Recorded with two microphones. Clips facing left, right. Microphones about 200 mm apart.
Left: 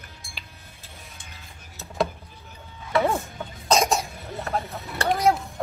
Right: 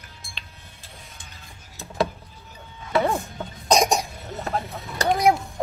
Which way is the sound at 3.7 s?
15° right (ahead or behind).